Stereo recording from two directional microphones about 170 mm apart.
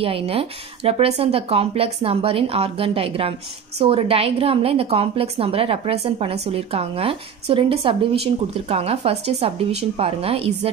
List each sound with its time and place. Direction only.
0.0 s a woman's voice: 35° right (ahead or behind)